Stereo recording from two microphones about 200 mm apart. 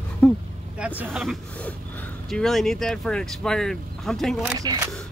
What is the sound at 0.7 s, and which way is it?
Speech, 5° right (ahead or behind).